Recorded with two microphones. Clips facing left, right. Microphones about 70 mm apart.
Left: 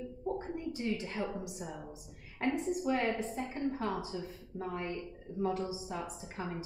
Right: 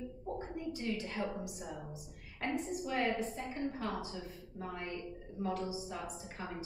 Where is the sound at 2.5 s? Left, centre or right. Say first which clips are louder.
Left 3 dB; left.